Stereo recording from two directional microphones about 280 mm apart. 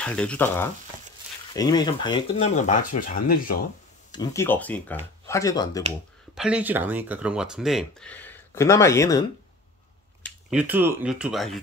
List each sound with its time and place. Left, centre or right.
0.0 s speech: centre; by 3.5 s left
4.1 s speech: centre
6.3 s speech: centre
10.2 s speech: centre